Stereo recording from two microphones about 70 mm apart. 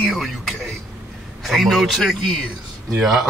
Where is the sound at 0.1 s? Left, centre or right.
Centre.